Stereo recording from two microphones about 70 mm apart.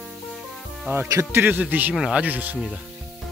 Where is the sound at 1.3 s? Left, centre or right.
Right.